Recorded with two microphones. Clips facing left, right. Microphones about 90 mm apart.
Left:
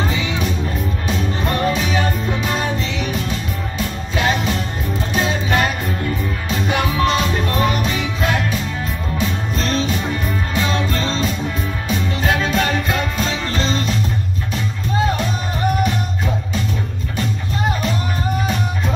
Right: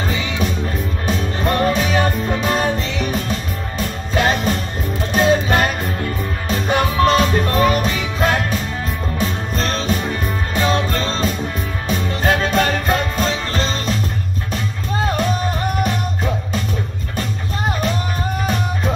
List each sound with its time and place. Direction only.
1.0 s music: 40° right (ahead or behind)
9.6 s music: 45° right (ahead or behind)